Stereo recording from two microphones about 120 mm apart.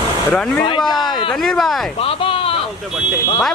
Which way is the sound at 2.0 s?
50° left (ahead or behind).